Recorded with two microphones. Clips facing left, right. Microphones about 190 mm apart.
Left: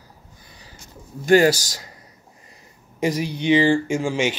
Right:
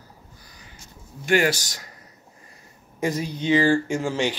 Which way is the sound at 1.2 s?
35° left (ahead or behind).